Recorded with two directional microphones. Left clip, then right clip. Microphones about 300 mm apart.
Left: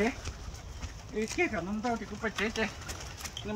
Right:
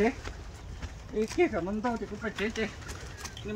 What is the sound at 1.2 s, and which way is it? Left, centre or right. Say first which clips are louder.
Speech: right 3 dB; centre.